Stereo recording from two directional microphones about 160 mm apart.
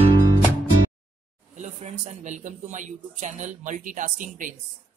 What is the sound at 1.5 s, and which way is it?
Speech, 50° right (ahead or behind).